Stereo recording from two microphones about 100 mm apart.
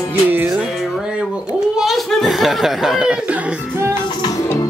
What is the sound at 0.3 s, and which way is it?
Music, 10° right (ahead or behind).